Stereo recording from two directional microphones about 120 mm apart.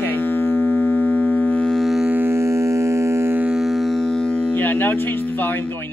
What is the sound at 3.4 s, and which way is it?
Music, 5° right (ahead or behind).